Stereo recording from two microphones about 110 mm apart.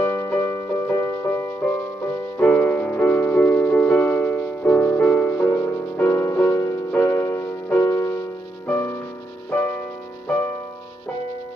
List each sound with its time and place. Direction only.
0.0 s music: 25° left (ahead or behind)
1.6 s music: 10° left (ahead or behind)